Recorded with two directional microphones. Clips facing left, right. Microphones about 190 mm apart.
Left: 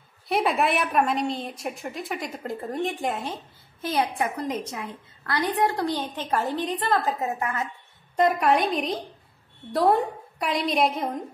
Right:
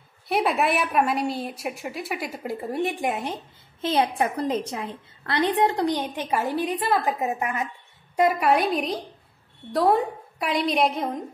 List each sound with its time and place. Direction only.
0.3 s a woman's voice: centre (ahead or behind)
3.8 s a woman's voice: 25° right (ahead or behind)
8.2 s a woman's voice: 5° right (ahead or behind)